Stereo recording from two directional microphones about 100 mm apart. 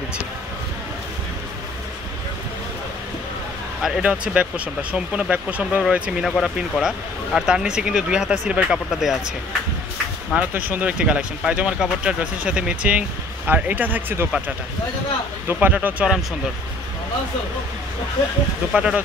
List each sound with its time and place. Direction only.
3.8 s speech: 10° right (ahead or behind)
6.3 s speech: centre (ahead or behind)
10.3 s speech: 20° right (ahead or behind)
15.4 s speech: 20° right (ahead or behind)
18.7 s speech: 5° right (ahead or behind)